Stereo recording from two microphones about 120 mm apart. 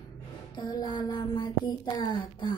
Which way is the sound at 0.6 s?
35° left (ahead or behind).